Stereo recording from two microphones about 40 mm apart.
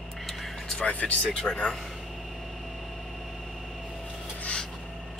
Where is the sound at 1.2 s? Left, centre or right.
Left.